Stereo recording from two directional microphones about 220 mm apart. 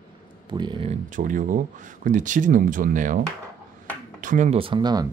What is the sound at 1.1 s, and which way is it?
Speech, 35° right (ahead or behind).